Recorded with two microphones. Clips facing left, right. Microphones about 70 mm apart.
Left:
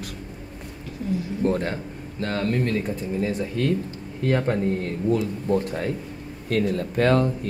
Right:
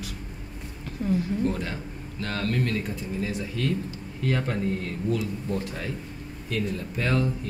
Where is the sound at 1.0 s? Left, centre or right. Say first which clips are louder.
Right 1 dB; right.